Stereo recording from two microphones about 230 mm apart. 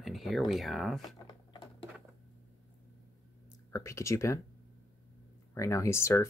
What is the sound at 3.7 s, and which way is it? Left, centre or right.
Speech, centre.